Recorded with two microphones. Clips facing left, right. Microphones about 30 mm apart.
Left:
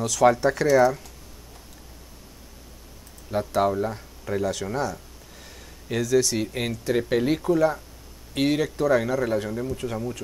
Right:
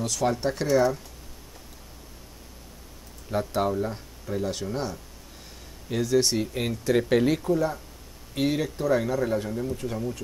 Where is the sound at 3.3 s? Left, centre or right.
Centre.